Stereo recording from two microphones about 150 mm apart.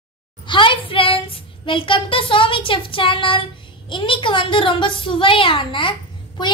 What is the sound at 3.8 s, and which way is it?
A child's voice, 35° left (ahead or behind).